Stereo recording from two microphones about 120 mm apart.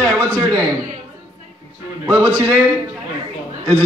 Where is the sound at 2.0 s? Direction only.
15° right (ahead or behind).